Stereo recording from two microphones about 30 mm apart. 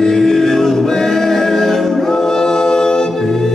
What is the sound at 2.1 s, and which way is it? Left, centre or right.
A capella, centre.